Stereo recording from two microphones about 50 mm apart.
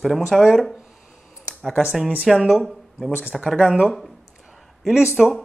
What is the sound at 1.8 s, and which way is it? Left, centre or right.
Speech, centre.